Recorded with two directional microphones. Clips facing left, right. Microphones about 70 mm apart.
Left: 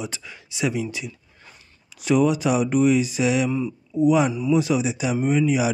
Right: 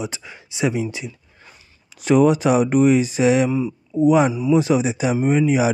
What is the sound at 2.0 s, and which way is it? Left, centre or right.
Speech, right.